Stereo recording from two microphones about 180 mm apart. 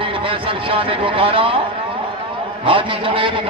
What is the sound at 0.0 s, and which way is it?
A man's voice, 30° right (ahead or behind).